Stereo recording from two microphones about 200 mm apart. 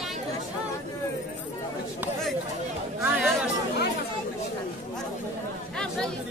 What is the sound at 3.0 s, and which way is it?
Speech, centre (ahead or behind).